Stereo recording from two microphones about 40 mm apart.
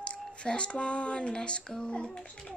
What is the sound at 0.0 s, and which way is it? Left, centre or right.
Speech, left.